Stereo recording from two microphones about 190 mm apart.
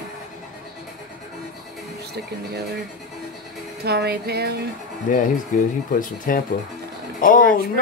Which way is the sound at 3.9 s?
55° right (ahead or behind).